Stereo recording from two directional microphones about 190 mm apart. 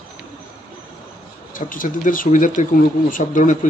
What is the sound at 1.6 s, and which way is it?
Speech, 45° left (ahead or behind).